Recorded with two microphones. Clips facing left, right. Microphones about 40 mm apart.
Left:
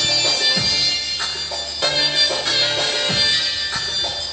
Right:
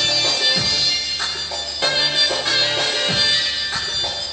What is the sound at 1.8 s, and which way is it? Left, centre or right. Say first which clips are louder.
Music: even; centre.